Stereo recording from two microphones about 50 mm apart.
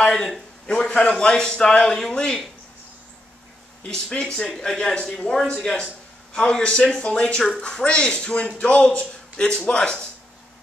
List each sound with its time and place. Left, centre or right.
0.0 s a man's voice: centre
3.8 s a man's voice: centre